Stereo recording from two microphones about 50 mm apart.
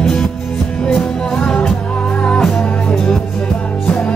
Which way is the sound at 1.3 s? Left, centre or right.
Left.